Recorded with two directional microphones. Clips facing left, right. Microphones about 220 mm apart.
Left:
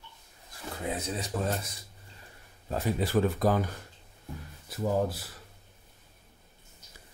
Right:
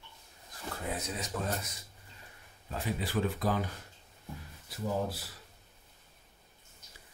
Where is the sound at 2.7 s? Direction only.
45° left (ahead or behind).